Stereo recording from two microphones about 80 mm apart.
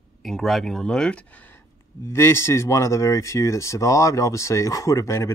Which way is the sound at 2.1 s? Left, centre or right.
Left.